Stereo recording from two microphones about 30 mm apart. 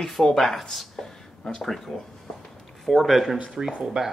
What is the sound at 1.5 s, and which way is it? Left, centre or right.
Speech, centre.